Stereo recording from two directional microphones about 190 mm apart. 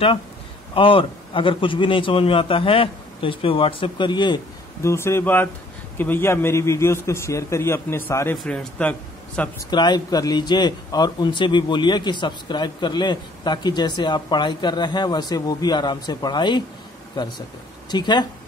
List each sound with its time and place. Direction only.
0.7 s a man's voice: 30° left (ahead or behind); by 9.5 s 5° left (ahead or behind)
9.7 s a man's voice: 20° left (ahead or behind)